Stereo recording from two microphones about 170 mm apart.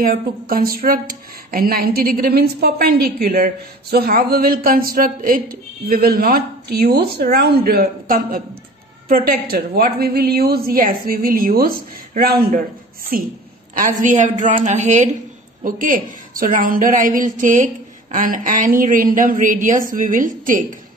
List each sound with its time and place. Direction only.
0.0 s a woman's voice: 60° right (ahead or behind)